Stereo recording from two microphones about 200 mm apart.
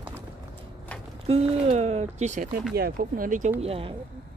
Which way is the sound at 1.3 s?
30° right (ahead or behind).